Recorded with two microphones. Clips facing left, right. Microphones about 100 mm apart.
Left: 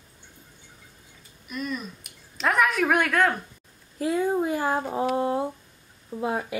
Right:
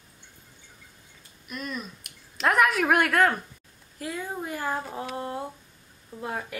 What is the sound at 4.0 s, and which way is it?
Speech, 25° left (ahead or behind).